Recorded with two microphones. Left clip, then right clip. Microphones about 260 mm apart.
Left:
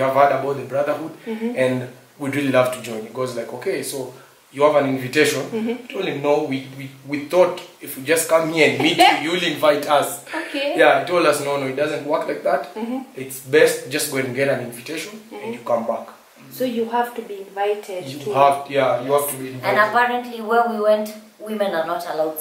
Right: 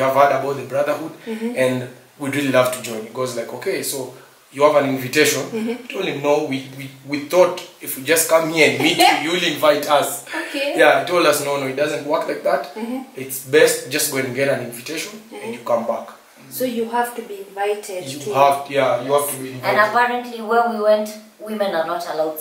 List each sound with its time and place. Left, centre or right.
0.0 s a man's voice: centre
15.6 s speech: centre